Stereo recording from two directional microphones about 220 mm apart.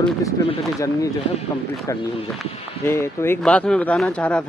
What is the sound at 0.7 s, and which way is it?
Speech, 15° left (ahead or behind).